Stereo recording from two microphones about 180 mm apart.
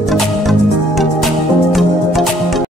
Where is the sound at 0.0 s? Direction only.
Centre (ahead or behind).